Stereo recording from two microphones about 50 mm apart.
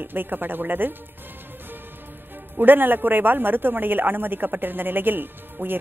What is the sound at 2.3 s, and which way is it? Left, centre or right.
A man's voice, right.